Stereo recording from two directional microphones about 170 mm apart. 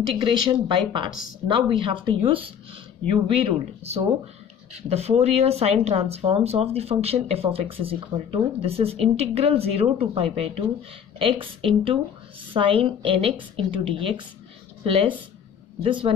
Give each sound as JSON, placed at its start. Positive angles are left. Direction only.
{"t": 0.1, "sound": "speech", "side_deg": -25}